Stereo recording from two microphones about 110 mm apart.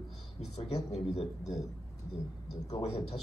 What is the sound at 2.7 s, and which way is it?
Speech, 65° left (ahead or behind).